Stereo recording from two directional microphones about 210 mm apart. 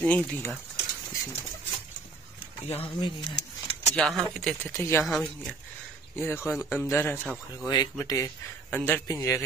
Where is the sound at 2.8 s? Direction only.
20° left (ahead or behind).